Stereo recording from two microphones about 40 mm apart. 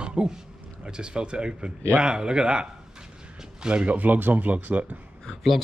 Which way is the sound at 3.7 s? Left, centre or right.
Right.